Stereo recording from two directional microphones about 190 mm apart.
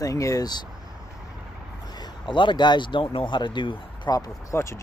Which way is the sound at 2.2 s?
25° left (ahead or behind).